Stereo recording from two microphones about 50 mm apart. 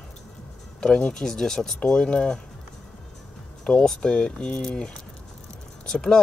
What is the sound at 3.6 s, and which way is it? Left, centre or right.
Speech, centre.